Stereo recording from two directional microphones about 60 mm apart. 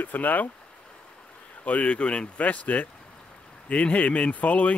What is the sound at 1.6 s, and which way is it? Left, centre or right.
Speech, left.